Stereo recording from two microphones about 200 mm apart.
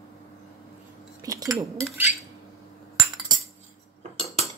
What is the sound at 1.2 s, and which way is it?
Speech, 15° right (ahead or behind).